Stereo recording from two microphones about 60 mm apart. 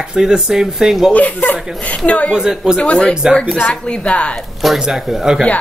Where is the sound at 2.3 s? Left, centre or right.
Centre.